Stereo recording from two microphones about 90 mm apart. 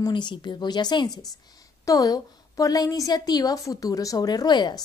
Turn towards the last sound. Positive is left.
turn(degrees=55)  # may be behind; listen again after turning